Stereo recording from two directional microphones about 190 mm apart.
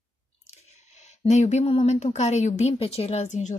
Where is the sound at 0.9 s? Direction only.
40° left (ahead or behind).